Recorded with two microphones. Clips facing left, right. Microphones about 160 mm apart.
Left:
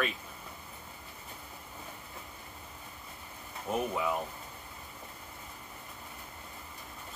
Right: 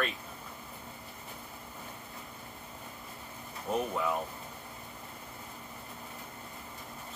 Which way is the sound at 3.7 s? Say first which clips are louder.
Right 1 dB; 5° left (ahead or behind).